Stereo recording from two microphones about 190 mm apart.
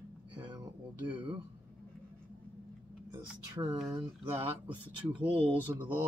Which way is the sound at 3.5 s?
15° right (ahead or behind).